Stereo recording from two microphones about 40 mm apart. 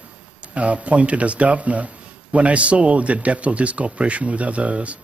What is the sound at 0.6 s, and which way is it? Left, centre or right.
Speech, right.